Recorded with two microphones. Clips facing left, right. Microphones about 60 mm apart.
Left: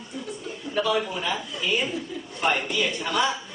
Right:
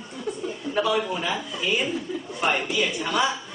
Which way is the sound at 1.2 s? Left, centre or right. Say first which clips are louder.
Right 1 dB; centre.